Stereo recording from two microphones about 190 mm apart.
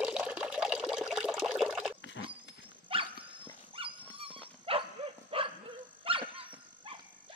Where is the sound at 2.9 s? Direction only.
30° right (ahead or behind).